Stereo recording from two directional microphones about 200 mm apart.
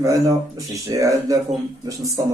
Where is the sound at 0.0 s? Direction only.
15° right (ahead or behind).